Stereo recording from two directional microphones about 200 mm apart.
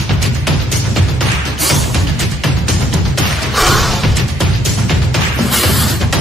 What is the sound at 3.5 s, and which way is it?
Music, centre (ahead or behind).